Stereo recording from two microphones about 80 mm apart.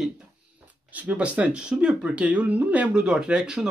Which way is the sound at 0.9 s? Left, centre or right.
Centre.